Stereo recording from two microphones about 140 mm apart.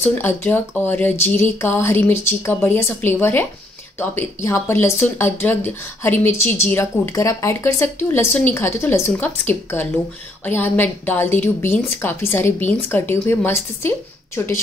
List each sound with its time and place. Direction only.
0.0 s speech: 15° left (ahead or behind)